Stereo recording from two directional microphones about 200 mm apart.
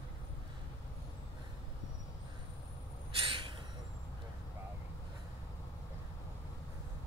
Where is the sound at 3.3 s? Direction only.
25° right (ahead or behind).